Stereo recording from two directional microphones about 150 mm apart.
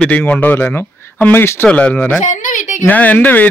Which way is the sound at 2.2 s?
55° left (ahead or behind).